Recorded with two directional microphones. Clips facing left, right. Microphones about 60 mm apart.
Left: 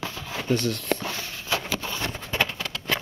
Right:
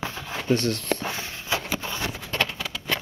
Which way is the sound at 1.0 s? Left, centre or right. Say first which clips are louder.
Right 1 dB; right.